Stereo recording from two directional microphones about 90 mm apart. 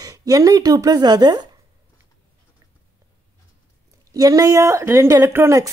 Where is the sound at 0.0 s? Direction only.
45° right (ahead or behind).